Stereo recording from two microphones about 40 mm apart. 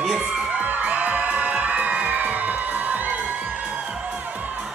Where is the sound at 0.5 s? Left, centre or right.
Right.